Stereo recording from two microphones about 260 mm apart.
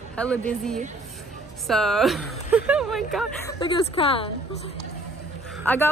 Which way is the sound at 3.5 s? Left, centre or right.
Centre.